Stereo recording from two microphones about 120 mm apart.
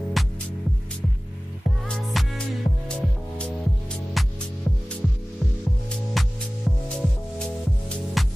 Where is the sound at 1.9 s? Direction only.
5° left (ahead or behind).